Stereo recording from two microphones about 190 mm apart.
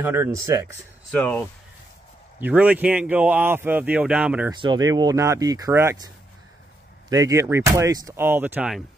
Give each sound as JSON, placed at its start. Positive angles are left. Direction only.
{"t": 0.0, "sound": "a man's voice", "side_deg": -10}
{"t": 1.1, "sound": "speech", "side_deg": 5}
{"t": 2.4, "sound": "a man's voice", "side_deg": -5}
{"t": 4.5, "sound": "a man's voice", "side_deg": -20}